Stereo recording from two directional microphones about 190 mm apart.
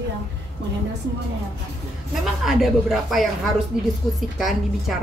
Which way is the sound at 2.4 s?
Centre (ahead or behind).